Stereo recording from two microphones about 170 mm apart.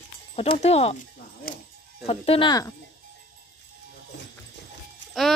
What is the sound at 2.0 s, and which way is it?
Speech, 35° left (ahead or behind).